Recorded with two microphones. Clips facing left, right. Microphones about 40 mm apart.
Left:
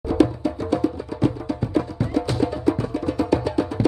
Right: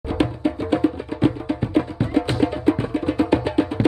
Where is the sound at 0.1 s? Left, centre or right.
Right.